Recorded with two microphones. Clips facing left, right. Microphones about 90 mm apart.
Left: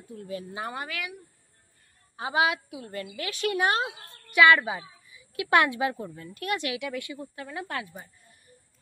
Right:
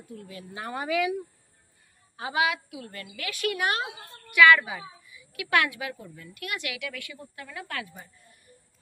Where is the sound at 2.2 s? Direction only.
25° left (ahead or behind).